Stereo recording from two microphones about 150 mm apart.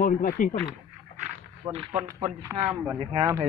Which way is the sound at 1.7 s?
40° right (ahead or behind).